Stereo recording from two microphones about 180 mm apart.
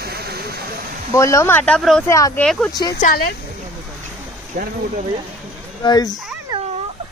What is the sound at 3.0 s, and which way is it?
Speech, 55° left (ahead or behind).